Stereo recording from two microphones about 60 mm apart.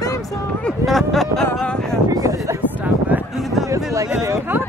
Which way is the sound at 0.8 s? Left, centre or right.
Centre.